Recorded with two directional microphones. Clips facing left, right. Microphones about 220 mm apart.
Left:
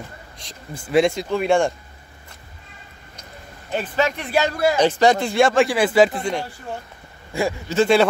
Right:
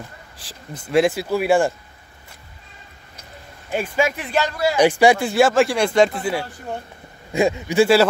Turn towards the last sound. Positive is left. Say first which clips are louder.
# right 3 dB
turn(degrees=-15)  # may be behind; listen again after turning